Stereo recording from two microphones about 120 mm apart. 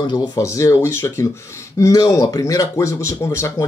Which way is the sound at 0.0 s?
35° left (ahead or behind).